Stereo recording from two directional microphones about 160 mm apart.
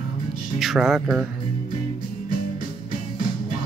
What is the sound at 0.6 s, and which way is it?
Speech, centre (ahead or behind).